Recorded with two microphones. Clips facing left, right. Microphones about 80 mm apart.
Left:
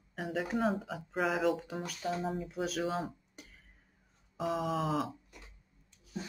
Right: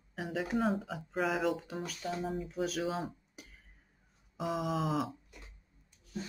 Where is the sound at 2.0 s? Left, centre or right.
Centre.